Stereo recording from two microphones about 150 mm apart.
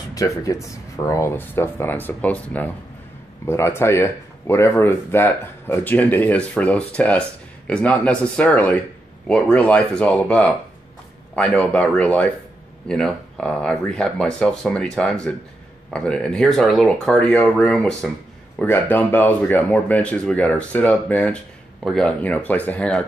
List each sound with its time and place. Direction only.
0.1 s speech: 25° left (ahead or behind)